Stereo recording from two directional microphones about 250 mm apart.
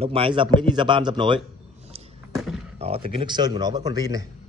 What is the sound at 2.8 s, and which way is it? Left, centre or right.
A man's voice, right.